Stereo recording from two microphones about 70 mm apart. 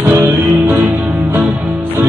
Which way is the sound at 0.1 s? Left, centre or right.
Right.